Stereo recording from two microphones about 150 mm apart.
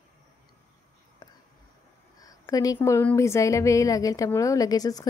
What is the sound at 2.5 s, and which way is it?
A woman's voice, 25° left (ahead or behind).